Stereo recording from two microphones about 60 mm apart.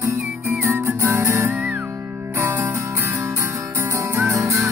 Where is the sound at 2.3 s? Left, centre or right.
Right.